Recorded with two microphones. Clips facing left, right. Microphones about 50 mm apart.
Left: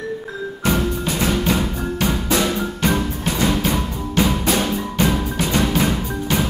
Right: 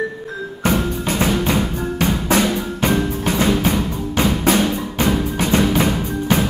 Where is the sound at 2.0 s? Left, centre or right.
Right.